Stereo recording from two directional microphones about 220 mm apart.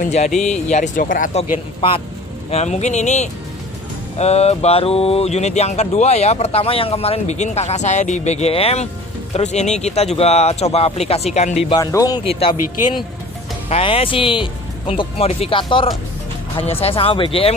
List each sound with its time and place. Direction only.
0.0 s speech: 30° left (ahead or behind)
0.3 s speech: 5° left (ahead or behind)
0.7 s speech: 35° left (ahead or behind)
2.5 s speech: 30° left (ahead or behind)
11.7 s speech: 15° left (ahead or behind)
13.7 s speech: 25° left (ahead or behind)